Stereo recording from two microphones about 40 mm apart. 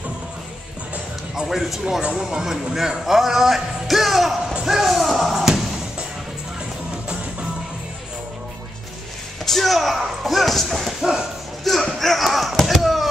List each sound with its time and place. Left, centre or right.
1.3 s speech: centre
1.6 s speech: centre
2.0 s speech: right
2.2 s speech: centre
9.5 s speech: centre
11.0 s bow-wow: centre
11.6 s speech: centre
12.8 s chop: centre